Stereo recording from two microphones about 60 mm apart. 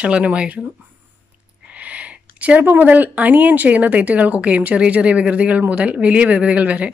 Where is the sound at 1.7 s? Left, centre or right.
Right.